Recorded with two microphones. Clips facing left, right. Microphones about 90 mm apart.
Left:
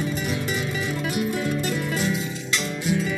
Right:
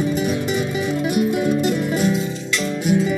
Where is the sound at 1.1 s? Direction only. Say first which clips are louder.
Right 7 dB; 20° right (ahead or behind).